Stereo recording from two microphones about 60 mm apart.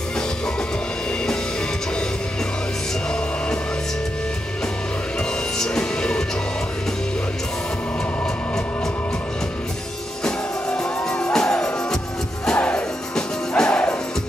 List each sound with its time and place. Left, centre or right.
5.6 s music: centre
10.2 s music: centre